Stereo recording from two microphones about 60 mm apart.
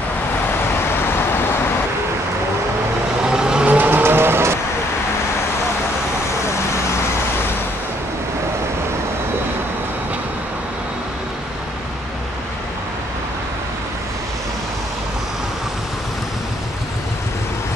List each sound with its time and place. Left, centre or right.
3.3 s vehicle: centre
3.6 s vehicle: right
4.0 s vehicle: right